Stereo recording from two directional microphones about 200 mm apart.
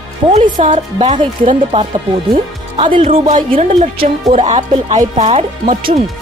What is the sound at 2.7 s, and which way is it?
Speech, 30° right (ahead or behind).